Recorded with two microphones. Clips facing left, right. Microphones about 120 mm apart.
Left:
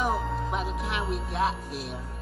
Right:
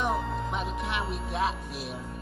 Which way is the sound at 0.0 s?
Centre (ahead or behind).